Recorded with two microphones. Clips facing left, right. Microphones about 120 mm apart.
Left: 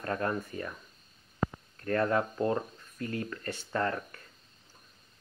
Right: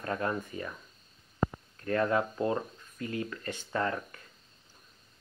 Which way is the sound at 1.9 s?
15° right (ahead or behind).